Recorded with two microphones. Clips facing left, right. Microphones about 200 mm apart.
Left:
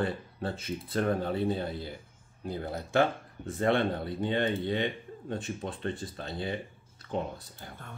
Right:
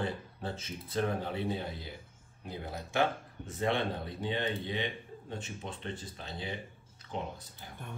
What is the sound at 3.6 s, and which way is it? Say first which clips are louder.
Speech: left 5 dB; 55° left (ahead or behind).